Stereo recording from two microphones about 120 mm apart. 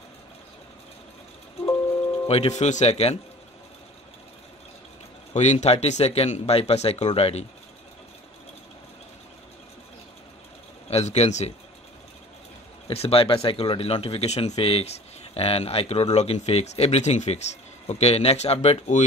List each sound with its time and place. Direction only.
2.2 s speech: 60° left (ahead or behind)
5.3 s speech: 75° left (ahead or behind)
10.9 s speech: 65° left (ahead or behind)
12.8 s speech: 55° left (ahead or behind); by 19.0 s 70° left (ahead or behind)